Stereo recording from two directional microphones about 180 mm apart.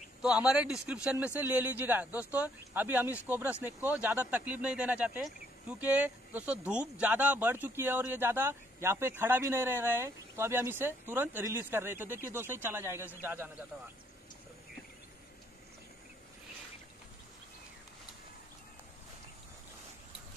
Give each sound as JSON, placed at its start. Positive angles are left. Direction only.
{"t": 0.2, "sound": "a man's voice", "side_deg": -5}